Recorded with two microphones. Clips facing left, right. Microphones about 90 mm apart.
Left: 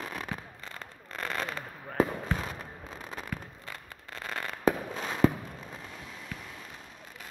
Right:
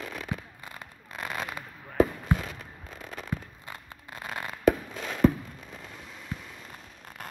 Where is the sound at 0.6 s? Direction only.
10° right (ahead or behind).